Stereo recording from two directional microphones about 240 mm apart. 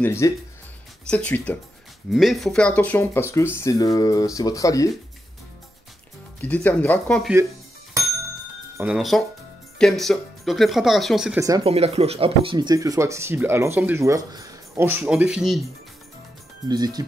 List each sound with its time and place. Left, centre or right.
0.0 s speech: centre
6.4 s speech: centre
8.7 s speech: centre
11.4 s speech: right; by 15.7 s centre
16.6 s speech: centre